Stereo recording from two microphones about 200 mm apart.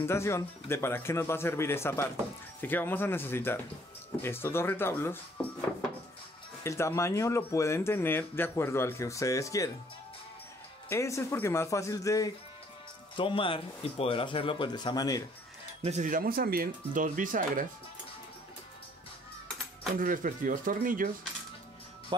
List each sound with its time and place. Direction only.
0.0 s speech: 15° left (ahead or behind)
10.9 s speech: 15° left (ahead or behind)
15.8 s speech: 35° right (ahead or behind)
20.0 s speech: 45° right (ahead or behind)